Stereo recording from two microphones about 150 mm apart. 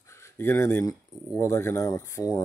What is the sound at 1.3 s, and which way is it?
Speech, 15° left (ahead or behind).